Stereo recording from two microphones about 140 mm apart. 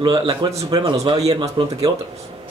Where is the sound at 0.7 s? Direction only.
25° right (ahead or behind).